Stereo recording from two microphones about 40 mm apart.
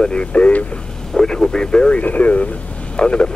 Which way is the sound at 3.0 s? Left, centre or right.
Left.